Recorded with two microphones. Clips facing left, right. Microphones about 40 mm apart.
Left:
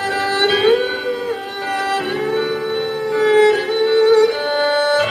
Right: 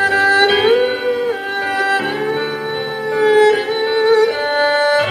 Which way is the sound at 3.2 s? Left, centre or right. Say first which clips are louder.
Right 2 dB; centre.